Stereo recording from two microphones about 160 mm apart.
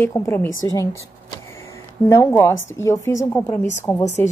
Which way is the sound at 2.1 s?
15° left (ahead or behind).